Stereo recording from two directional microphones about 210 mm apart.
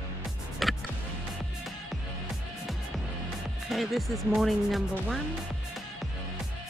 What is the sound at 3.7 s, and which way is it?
Speech, centre (ahead or behind).